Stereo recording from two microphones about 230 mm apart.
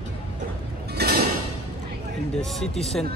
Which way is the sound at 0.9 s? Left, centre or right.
Right.